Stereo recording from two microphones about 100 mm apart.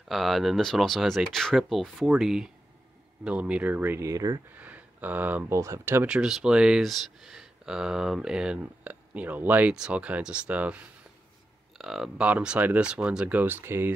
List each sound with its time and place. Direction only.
0.1 s speech: centre (ahead or behind); by 4.1 s 20° right (ahead or behind)
4.1 s speech: 35° right (ahead or behind)
4.5 s a sound: 15° right (ahead or behind)
5.5 s speech: 30° right (ahead or behind)
6.0 s speech: 10° right (ahead or behind)
11.8 s speech: 5° right (ahead or behind); by 13.9 s 20° right (ahead or behind)